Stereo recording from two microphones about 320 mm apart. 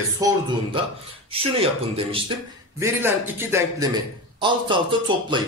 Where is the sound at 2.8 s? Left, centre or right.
Centre.